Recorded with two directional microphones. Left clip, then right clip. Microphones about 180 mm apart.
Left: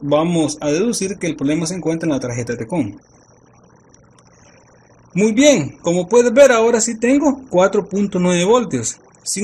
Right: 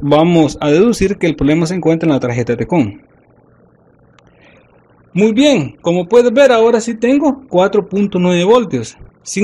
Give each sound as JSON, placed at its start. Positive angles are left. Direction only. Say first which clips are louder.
{"t": 0.1, "sound": "a man's voice", "louder": "right 6 dB", "side_deg": -40}
{"t": 5.1, "sound": "speech", "louder": "right 2 dB", "side_deg": -25}